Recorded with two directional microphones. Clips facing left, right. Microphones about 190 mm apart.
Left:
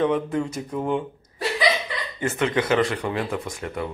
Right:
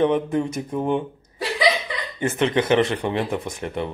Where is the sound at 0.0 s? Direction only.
20° right (ahead or behind).